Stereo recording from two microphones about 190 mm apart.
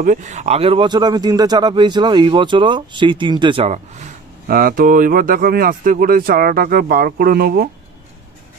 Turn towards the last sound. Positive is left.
turn(degrees=-55)  # may be behind; listen again after turning